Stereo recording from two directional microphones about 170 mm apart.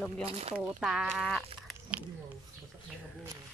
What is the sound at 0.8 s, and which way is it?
Speech, 5° right (ahead or behind).